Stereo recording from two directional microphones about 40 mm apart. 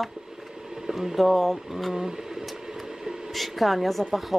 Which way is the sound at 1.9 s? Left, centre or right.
Centre.